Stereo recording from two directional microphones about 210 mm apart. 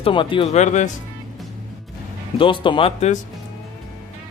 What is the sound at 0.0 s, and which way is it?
Speech, 25° left (ahead or behind).